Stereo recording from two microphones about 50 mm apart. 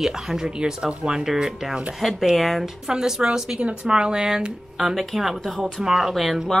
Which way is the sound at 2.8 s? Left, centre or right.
Centre.